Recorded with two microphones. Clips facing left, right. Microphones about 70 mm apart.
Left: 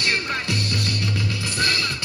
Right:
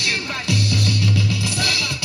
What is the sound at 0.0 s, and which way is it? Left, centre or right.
Music, left.